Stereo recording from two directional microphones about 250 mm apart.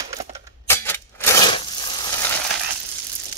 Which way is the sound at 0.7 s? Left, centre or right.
Centre.